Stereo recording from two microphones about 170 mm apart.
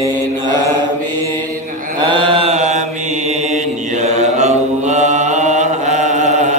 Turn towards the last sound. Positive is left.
turn(degrees=-45)  # may be behind; listen again after turning